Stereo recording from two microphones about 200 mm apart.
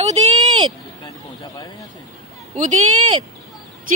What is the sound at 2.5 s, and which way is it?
Speech, 35° right (ahead or behind).